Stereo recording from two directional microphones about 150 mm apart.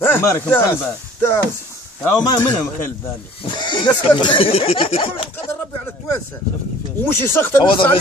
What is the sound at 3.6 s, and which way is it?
Speech, 30° left (ahead or behind).